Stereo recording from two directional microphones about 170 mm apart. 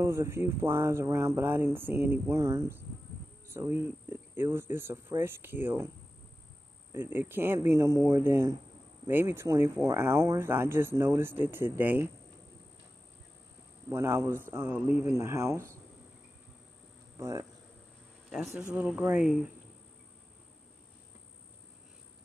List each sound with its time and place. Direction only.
0.0 s speech: 15° right (ahead or behind)
6.9 s speech: 15° right (ahead or behind)
13.8 s speech: 15° right (ahead or behind)
17.2 s speech: 15° right (ahead or behind)
18.8 s speech: 10° right (ahead or behind)